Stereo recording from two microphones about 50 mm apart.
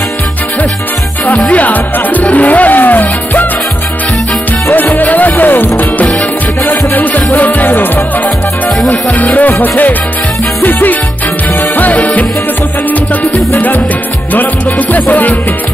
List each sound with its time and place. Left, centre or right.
1.5 s music: left
4.7 s music: left
9.2 s music: left
13.6 s music: left